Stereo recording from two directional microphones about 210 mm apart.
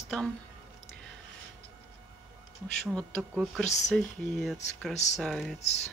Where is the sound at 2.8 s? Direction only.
Centre (ahead or behind).